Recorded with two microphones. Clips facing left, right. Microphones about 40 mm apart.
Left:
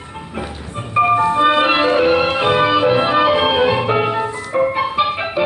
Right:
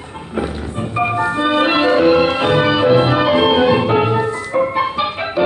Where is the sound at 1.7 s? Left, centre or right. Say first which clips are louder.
Right 2 dB; centre.